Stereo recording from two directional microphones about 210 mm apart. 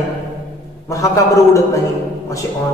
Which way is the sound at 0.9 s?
15° left (ahead or behind).